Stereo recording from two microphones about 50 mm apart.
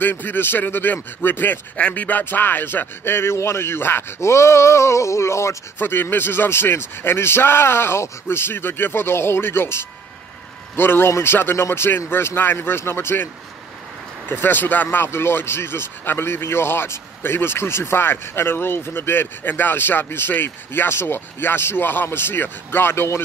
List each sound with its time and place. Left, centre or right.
0.0 s speech: left
1.2 s a sound: left
1.8 s a sound: left
2.2 s a man's voice: left
4.2 s speech: left
5.8 s speech: left
11.5 s speech: left
14.3 s speech: left